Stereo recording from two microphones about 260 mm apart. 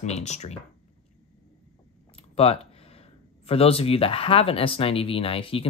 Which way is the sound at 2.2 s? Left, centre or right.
Left.